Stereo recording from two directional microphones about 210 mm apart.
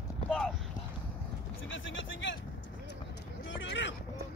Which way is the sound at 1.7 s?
65° left (ahead or behind).